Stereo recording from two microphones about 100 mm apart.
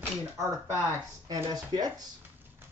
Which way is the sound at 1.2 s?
40° right (ahead or behind).